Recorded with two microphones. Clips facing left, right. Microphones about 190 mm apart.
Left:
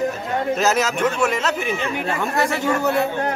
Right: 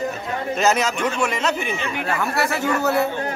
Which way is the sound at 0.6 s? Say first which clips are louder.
Right 2 dB; 5° left (ahead or behind).